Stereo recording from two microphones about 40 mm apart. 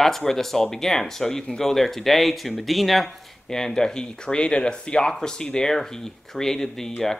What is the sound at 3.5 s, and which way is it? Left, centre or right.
Speech, centre.